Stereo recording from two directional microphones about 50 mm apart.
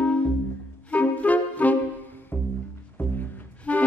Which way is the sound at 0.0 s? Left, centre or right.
Left.